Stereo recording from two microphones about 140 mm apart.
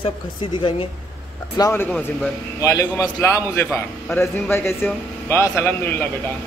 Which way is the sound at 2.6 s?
25° left (ahead or behind).